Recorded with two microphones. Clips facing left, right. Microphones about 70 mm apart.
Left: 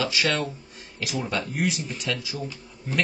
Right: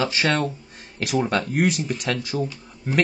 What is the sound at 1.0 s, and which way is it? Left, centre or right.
Speech, right.